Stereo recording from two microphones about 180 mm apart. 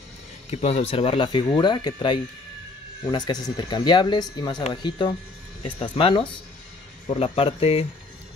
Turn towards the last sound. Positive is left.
turn(degrees=35)  # may be behind; listen again after turning